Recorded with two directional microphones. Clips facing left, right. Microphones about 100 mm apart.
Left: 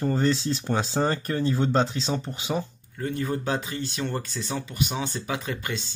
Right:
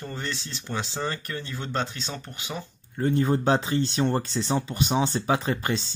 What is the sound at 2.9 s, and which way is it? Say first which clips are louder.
Speech: right 5 dB; 30° right (ahead or behind).